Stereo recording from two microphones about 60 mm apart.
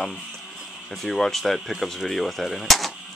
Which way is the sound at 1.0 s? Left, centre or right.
Centre.